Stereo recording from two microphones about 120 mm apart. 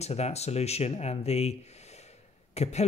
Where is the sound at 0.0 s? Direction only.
65° left (ahead or behind).